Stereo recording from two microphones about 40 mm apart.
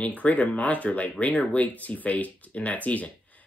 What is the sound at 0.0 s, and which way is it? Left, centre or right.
Speech, left.